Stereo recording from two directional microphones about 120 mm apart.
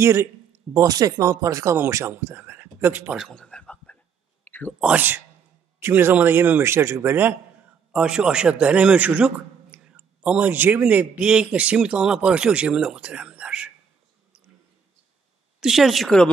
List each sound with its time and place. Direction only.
0.0 s a man's voice: 20° right (ahead or behind)
3.2 s a sound: 5° left (ahead or behind)
4.7 s a man's voice: 10° right (ahead or behind)
15.6 s speech: centre (ahead or behind)